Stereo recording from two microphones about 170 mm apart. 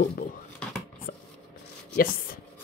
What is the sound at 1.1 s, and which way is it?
Chopping, 60° left (ahead or behind).